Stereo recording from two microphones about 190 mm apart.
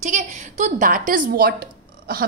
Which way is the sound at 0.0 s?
40° right (ahead or behind).